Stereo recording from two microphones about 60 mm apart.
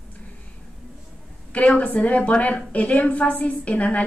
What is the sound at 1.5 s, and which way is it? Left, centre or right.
A woman's voice, left.